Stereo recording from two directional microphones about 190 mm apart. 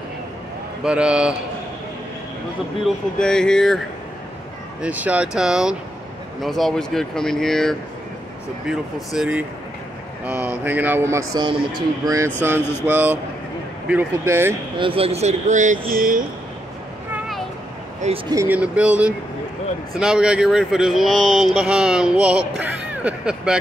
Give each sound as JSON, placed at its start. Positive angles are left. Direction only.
{"t": 0.8, "sound": "speech", "side_deg": -5}
{"t": 3.2, "sound": "speech", "side_deg": 5}
{"t": 4.8, "sound": "a man's voice", "side_deg": -10}
{"t": 14.8, "sound": "speech", "side_deg": -30}
{"t": 18.3, "sound": "a man's voice", "side_deg": -10}